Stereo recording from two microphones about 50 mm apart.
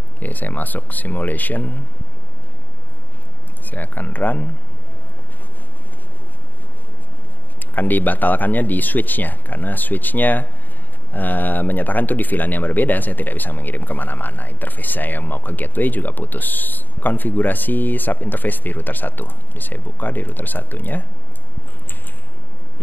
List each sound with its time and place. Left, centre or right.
0.2 s speech: left
3.6 s speech: left
7.7 s speech: left